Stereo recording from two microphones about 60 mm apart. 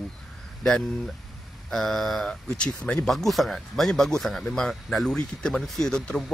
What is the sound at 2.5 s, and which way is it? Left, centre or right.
Speech, centre.